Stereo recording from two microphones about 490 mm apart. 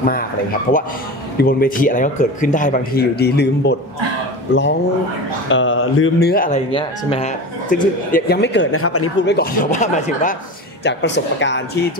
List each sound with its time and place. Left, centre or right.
0.0 s speech: centre
5.5 s speech: left